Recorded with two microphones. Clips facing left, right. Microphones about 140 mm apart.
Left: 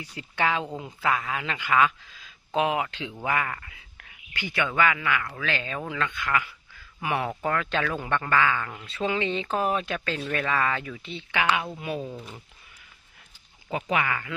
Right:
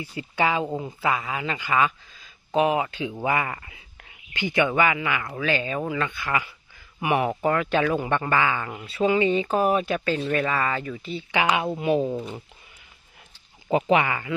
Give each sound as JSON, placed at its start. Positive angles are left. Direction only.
{"t": 0.0, "sound": "a man's voice", "side_deg": -5}
{"t": 11.3, "sound": "a man's voice", "side_deg": -15}
{"t": 12.0, "sound": "speech", "side_deg": -35}
{"t": 13.7, "sound": "speech", "side_deg": -30}